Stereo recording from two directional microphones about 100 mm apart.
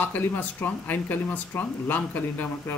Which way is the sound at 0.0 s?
20° left (ahead or behind).